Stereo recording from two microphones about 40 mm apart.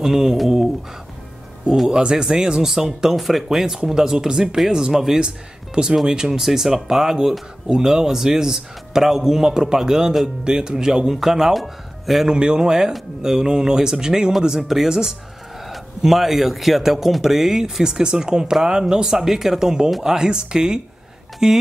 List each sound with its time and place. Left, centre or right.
0.0 s speech: centre
1.9 s speech: right; by 12.3 s centre
12.3 s speech: right